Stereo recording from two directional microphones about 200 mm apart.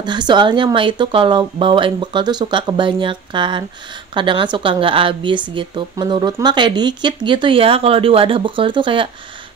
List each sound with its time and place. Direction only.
0.0 s a woman's voice: 20° right (ahead or behind)